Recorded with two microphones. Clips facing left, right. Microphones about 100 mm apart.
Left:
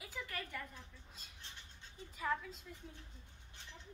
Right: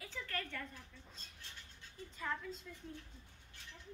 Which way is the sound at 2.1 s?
5° left (ahead or behind).